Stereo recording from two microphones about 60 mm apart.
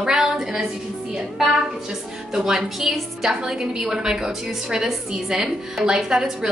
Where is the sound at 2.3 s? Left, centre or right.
Centre.